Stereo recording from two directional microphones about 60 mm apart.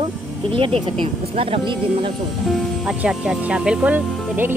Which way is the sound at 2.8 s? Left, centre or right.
Centre.